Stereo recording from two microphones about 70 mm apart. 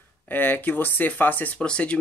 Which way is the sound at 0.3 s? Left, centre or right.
Left.